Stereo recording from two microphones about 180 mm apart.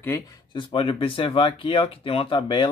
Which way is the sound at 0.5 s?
30° left (ahead or behind).